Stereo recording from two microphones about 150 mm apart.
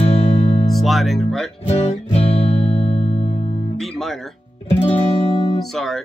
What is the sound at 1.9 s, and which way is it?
Music, 45° left (ahead or behind).